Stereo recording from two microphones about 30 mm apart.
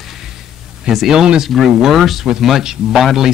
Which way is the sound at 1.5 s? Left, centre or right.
Centre.